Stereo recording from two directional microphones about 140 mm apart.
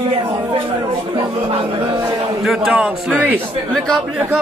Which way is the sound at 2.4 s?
Centre (ahead or behind).